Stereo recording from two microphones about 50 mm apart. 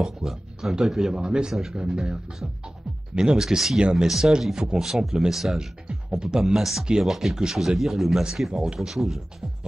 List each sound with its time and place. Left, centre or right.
0.0 s speech: centre
1.5 s speech: centre
3.2 s speech: centre
5.9 s music: centre
6.2 s speech: centre